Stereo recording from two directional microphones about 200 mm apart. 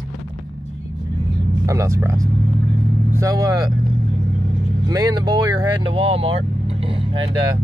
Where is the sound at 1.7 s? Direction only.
15° right (ahead or behind).